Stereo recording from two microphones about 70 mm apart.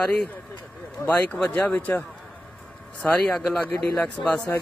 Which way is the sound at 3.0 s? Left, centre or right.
Centre.